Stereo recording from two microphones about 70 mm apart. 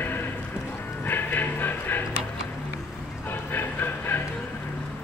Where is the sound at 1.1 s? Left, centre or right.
Left.